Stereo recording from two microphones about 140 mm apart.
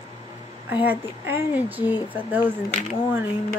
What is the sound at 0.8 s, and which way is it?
Speech, 15° right (ahead or behind).